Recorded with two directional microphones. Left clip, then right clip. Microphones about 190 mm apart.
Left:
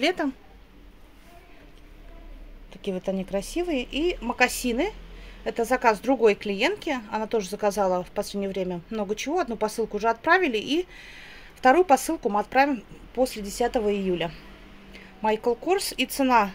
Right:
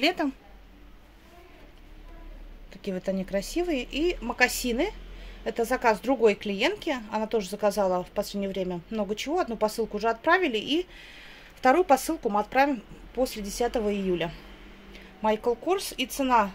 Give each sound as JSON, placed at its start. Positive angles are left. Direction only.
{"t": 0.0, "sound": "a woman's voice", "side_deg": 15}
{"t": 2.7, "sound": "a woman's voice", "side_deg": 10}